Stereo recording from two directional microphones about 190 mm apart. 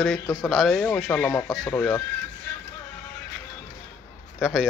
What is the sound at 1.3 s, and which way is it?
Speech, 15° left (ahead or behind).